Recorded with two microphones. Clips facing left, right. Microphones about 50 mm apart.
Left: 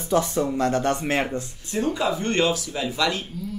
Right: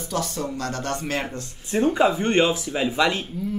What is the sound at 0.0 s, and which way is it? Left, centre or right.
Speech, left.